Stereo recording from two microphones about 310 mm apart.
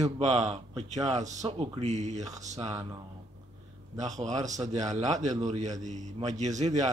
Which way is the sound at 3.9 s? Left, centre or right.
Right.